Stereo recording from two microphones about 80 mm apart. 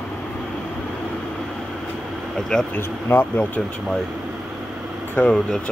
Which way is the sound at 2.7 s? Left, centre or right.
Left.